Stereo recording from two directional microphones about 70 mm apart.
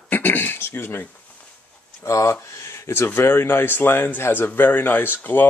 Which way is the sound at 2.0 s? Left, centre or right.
Left.